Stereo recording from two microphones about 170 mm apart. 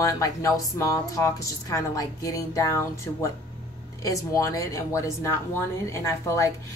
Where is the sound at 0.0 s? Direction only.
20° left (ahead or behind).